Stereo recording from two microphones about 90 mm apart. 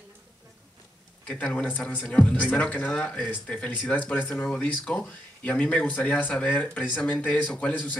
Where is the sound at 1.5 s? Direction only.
15° left (ahead or behind).